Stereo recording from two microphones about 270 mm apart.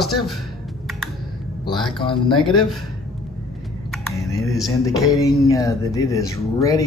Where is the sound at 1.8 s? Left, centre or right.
Centre.